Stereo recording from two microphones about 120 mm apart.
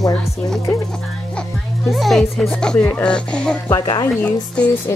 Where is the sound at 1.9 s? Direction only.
Centre (ahead or behind).